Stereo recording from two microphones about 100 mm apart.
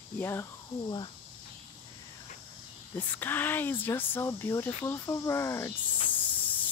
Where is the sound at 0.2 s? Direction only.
25° left (ahead or behind).